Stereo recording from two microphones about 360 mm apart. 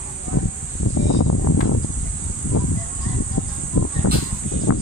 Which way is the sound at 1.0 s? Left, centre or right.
Left.